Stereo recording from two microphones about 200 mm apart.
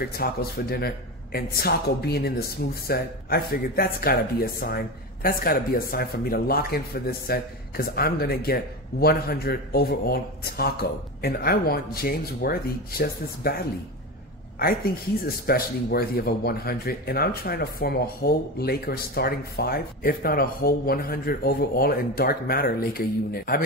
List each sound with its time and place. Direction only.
0.0 s a man's voice: 50° left (ahead or behind)
14.6 s a man's voice: 50° left (ahead or behind)